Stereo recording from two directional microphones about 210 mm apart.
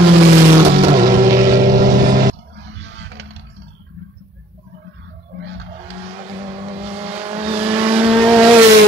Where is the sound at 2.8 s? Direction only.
55° right (ahead or behind).